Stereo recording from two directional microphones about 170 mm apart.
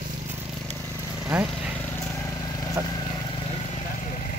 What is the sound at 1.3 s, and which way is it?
Speech, 5° right (ahead or behind).